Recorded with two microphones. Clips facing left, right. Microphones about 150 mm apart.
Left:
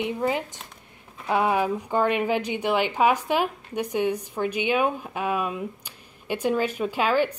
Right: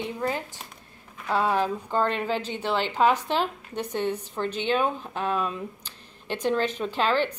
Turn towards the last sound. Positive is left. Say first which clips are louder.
# left 2 dB
turn(degrees=10)  # may be behind; listen again after turning